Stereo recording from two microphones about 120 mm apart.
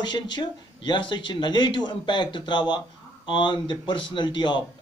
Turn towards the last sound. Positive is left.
turn(degrees=40)  # may be behind; listen again after turning